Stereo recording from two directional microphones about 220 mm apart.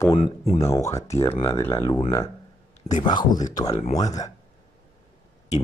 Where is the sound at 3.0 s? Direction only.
20° left (ahead or behind).